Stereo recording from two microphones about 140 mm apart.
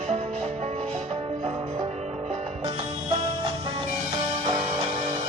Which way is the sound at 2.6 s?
35° right (ahead or behind).